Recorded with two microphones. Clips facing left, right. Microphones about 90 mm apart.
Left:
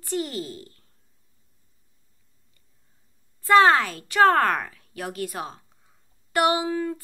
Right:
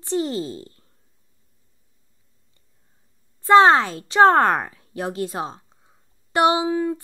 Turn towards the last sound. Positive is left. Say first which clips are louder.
# right 4 dB
turn(degrees=-20)  # may be behind; listen again after turning